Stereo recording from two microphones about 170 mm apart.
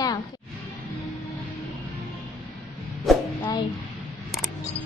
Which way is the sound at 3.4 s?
25° left (ahead or behind).